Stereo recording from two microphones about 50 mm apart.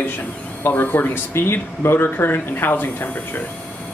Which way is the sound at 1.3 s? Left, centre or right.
Left.